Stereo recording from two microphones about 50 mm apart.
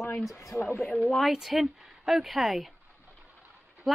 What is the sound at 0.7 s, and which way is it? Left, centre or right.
Speech, centre.